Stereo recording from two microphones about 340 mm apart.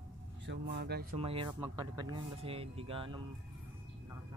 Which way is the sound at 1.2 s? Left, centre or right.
Centre.